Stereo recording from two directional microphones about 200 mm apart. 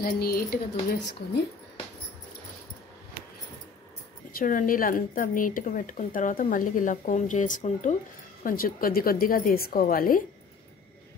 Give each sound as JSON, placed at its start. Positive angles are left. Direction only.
{"t": 0.0, "sound": "a woman's voice", "side_deg": 50}
{"t": 4.4, "sound": "a woman's voice", "side_deg": 45}